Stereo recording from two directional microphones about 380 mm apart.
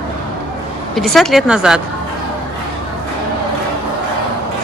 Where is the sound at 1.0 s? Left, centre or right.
Centre.